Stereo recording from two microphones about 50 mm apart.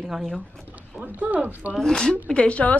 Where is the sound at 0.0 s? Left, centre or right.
Centre.